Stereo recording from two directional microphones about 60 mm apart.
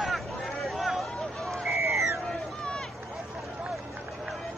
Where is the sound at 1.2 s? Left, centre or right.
Centre.